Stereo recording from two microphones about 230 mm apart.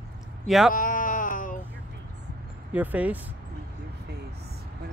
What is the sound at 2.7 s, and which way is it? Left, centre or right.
Speech, centre.